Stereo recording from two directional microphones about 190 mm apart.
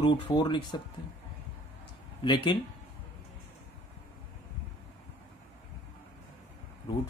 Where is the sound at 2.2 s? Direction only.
25° left (ahead or behind).